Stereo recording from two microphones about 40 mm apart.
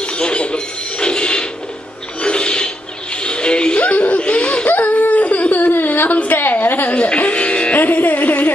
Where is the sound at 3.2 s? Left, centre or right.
Left.